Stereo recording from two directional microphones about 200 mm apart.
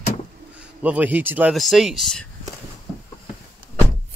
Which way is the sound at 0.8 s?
10° right (ahead or behind).